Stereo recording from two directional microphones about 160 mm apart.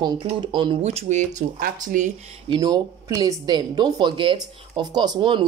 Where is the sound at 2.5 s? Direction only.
25° right (ahead or behind).